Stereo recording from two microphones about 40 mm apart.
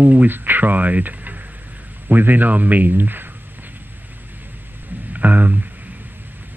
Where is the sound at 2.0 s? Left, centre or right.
Right.